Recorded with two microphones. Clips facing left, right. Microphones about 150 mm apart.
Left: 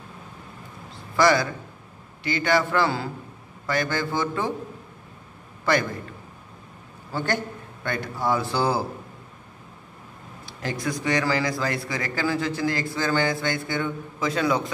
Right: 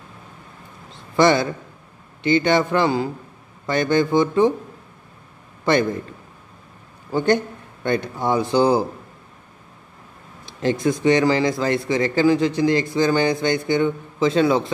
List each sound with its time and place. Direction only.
1.1 s a man's voice: 25° right (ahead or behind)
5.7 s a man's voice: 20° right (ahead or behind)
7.1 s a man's voice: 20° right (ahead or behind)
10.4 s a man's voice: 20° right (ahead or behind)